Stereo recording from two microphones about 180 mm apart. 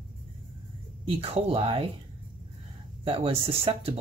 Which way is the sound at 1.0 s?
30° right (ahead or behind).